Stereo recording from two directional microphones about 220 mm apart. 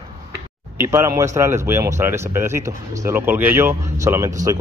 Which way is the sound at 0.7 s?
10° right (ahead or behind).